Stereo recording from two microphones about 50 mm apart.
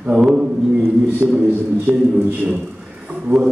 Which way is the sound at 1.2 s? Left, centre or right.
Centre.